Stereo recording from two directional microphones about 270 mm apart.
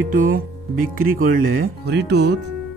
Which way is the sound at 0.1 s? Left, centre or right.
Right.